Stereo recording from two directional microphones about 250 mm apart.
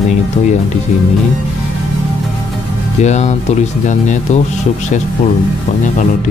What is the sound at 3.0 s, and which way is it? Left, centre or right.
Speech, left.